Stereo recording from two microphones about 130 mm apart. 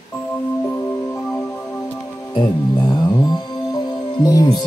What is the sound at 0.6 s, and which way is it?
Music, 15° left (ahead or behind).